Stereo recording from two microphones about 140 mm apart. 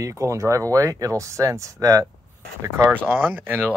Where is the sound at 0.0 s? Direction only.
20° right (ahead or behind).